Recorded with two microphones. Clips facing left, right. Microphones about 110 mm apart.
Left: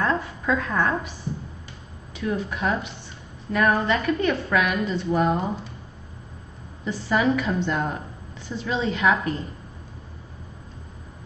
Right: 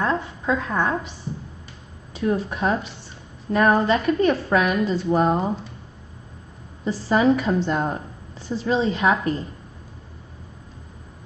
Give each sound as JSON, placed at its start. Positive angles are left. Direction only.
{"t": 0.0, "sound": "a woman's voice", "side_deg": -20}
{"t": 2.1, "sound": "a woman's voice", "side_deg": -35}
{"t": 6.8, "sound": "a woman's voice", "side_deg": -35}